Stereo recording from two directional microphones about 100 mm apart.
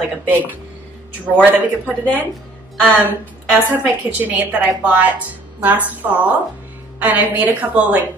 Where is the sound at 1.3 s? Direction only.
15° right (ahead or behind).